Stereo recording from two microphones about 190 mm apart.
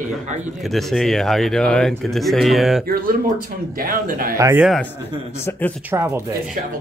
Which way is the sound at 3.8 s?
50° right (ahead or behind).